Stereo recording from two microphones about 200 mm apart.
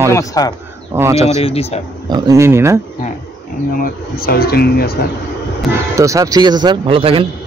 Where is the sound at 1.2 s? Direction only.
30° left (ahead or behind).